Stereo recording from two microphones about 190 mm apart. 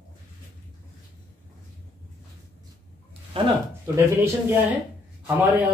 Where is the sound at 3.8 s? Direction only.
15° right (ahead or behind).